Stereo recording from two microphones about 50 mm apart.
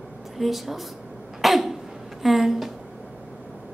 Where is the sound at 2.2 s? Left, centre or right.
Centre.